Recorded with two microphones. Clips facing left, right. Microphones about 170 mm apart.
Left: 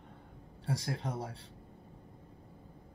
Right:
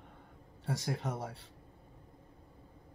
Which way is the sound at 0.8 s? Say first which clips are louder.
Right 1 dB; 5° right (ahead or behind).